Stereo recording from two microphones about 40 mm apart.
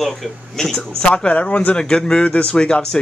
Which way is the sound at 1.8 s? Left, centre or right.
Left.